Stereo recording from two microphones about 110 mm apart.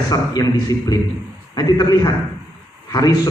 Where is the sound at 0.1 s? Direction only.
35° left (ahead or behind).